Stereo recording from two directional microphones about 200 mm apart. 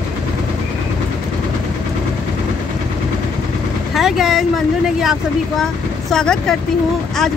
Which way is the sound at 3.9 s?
Centre (ahead or behind).